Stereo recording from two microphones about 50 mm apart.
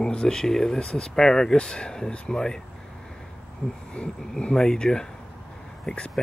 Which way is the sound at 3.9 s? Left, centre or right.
Centre.